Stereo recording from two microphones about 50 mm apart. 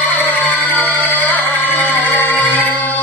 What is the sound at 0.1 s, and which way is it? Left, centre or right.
Music, left.